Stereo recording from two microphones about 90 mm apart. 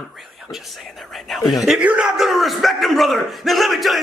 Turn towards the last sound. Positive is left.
turn(degrees=0)  # may be behind; listen again after turning